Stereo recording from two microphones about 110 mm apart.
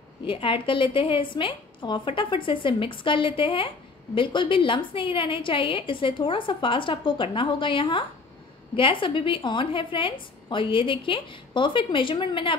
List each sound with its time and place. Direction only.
0.3 s a woman's voice: 50° left (ahead or behind)